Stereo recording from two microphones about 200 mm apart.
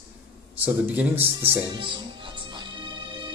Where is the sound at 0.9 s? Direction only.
10° right (ahead or behind).